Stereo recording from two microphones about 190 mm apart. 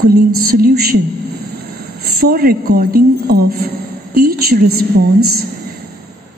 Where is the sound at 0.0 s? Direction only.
50° right (ahead or behind).